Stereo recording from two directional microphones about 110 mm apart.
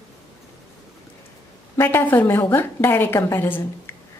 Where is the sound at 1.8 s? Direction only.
20° left (ahead or behind).